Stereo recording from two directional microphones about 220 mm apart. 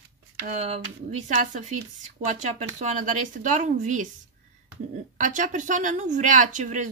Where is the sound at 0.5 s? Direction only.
30° right (ahead or behind).